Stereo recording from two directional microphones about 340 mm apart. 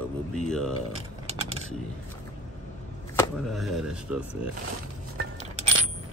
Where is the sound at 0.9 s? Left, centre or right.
Centre.